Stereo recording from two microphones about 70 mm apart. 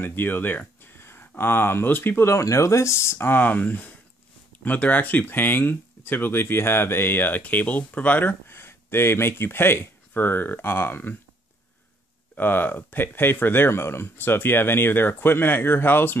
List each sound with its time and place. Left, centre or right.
0.0 s a sound: left
1.4 s speech: left
2.4 s speech: left
12.4 s speech: left